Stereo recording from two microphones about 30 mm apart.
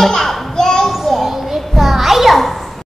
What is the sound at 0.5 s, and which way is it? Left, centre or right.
Children playing, centre.